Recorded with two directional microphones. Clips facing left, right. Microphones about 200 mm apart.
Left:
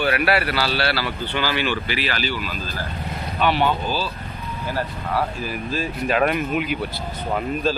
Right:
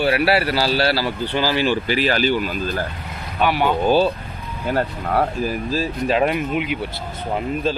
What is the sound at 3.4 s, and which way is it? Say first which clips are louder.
Speech: even; 10° right (ahead or behind).